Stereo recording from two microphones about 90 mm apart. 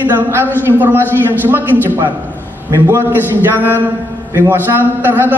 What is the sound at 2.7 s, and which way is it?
A man's voice, 25° right (ahead or behind).